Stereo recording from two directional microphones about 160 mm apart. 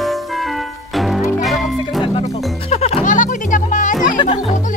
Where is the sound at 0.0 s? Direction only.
Centre (ahead or behind).